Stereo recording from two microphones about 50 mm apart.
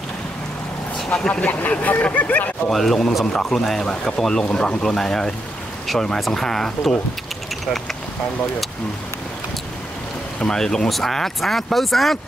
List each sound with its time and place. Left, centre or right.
0.9 s vehicle: centre
1.3 s speech: left
2.7 s speech: centre
10.4 s speech: centre